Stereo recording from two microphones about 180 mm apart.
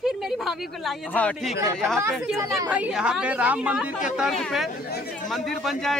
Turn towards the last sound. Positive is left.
turn(degrees=0)  # may be behind; listen again after turning